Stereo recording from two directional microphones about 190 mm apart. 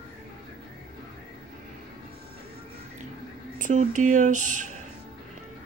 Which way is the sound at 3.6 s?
40° right (ahead or behind).